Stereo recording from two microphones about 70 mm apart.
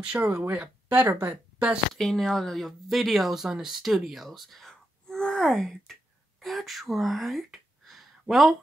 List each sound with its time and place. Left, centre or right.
0.0 s speech: centre
2.0 s speech: centre